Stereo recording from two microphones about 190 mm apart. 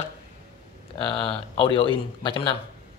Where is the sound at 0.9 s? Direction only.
30° left (ahead or behind).